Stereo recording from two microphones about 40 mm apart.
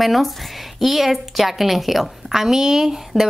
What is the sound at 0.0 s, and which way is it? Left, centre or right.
A woman's voice, centre.